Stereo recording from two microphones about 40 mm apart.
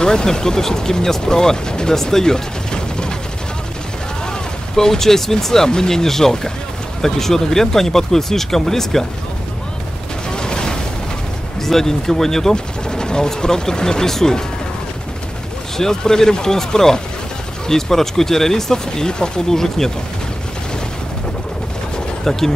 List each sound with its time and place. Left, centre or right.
0.0 s speech: centre
2.0 s gunshot: centre
4.3 s speech: centre
10.3 s a sound: centre
11.6 s speech: centre
15.8 s speech: centre
22.2 s speech: centre